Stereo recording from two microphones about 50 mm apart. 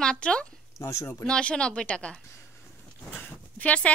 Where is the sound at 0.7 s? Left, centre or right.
Left.